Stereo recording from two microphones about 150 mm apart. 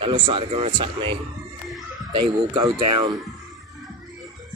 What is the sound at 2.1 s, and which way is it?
Speech, 30° right (ahead or behind).